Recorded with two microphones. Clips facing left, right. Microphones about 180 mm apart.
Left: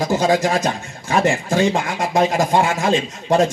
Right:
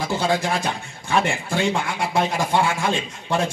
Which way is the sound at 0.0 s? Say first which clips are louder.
Left 5 dB; 40° left (ahead or behind).